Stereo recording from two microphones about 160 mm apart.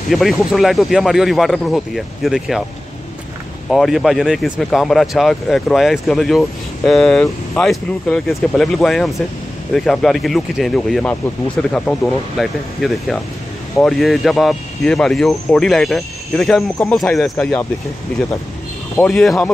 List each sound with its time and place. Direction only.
0.1 s speech: centre (ahead or behind)
3.7 s speech: centre (ahead or behind)
18.9 s speech: 5° left (ahead or behind)